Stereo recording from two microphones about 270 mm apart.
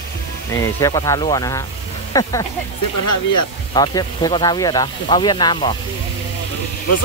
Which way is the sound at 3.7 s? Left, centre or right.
Centre.